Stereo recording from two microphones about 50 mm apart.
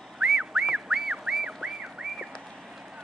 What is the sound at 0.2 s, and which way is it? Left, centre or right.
Music, centre.